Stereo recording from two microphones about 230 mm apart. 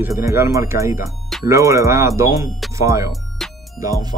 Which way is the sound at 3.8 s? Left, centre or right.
Centre.